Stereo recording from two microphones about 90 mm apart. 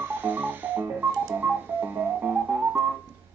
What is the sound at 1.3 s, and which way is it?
Music, 20° right (ahead or behind).